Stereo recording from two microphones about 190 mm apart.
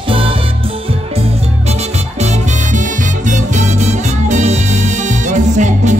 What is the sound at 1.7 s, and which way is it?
Music, 35° right (ahead or behind).